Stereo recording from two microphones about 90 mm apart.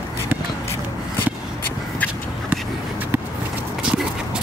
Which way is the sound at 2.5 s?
20° right (ahead or behind).